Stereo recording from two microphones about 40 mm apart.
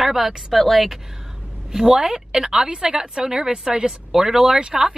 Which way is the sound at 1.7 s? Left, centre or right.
Centre.